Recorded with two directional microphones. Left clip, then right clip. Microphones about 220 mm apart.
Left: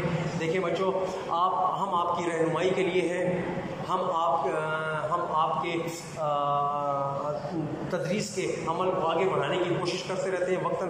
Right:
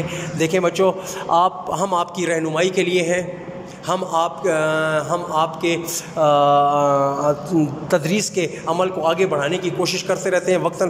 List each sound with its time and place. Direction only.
0.4 s a man's voice: 50° right (ahead or behind)